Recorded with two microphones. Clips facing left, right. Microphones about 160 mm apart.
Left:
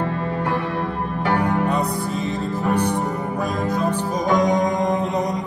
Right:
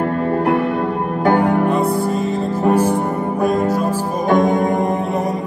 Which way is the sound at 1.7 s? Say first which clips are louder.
Right 6 dB; centre (ahead or behind).